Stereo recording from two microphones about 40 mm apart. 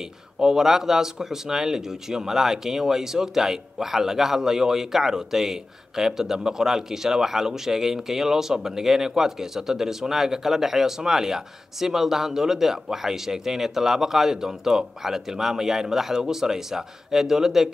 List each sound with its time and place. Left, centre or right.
0.4 s speech: centre